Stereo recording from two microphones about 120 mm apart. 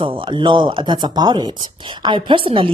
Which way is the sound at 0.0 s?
45° right (ahead or behind).